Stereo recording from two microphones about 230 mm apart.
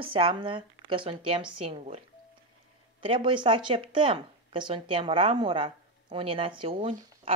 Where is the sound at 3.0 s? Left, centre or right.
Right.